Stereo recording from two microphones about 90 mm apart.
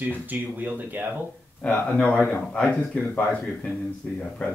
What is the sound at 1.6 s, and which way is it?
Speech, 15° left (ahead or behind).